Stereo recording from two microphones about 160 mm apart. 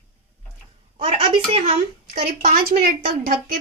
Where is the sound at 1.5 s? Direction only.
45° right (ahead or behind); by 2.8 s 65° right (ahead or behind).